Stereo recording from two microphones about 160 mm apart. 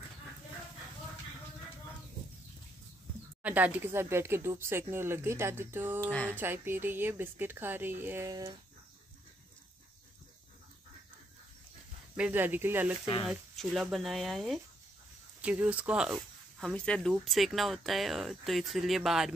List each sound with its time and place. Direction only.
3.4 s speech: 10° right (ahead or behind)
12.2 s speech: 10° right (ahead or behind)
13.3 s speech: 5° right (ahead or behind)
16.2 s speech: centre (ahead or behind)